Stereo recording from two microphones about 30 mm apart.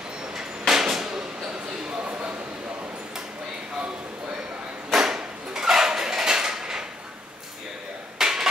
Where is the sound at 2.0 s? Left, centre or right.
Right.